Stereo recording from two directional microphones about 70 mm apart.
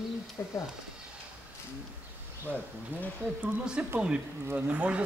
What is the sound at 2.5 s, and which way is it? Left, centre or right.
Speech, right.